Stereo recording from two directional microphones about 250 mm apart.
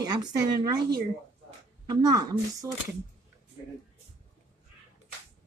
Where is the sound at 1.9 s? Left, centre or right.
Centre.